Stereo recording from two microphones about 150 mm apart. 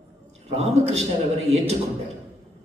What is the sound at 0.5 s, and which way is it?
Speech, 45° right (ahead or behind).